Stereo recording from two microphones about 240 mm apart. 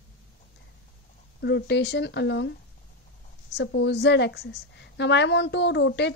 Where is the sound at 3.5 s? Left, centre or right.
Left.